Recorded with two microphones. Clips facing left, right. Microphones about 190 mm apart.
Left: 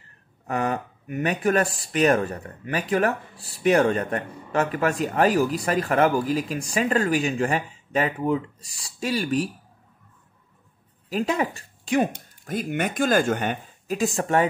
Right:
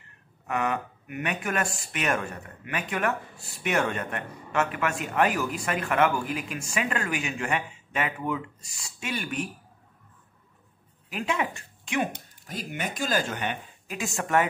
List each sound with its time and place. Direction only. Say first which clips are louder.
0.5 s speech: left 3 dB; 35° left (ahead or behind)
11.1 s speech: left 5 dB; 35° left (ahead or behind)
12.4 s speech: left 8 dB; 55° left (ahead or behind); by 14.5 s 35° left (ahead or behind)